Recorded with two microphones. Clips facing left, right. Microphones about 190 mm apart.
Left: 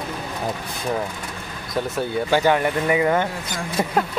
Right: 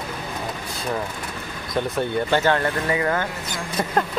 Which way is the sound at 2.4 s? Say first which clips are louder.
Left 2 dB; 15° left (ahead or behind).